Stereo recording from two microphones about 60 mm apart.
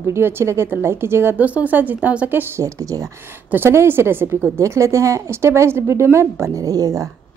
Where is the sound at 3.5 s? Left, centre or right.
Right.